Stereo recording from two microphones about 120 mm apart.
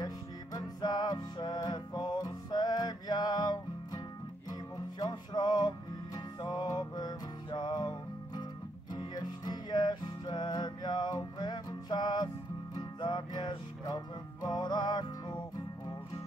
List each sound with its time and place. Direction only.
0.0 s music: 35° left (ahead or behind)
8.9 s music: 35° left (ahead or behind)